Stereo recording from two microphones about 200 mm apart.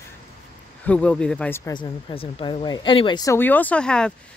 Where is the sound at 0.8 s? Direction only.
5° left (ahead or behind).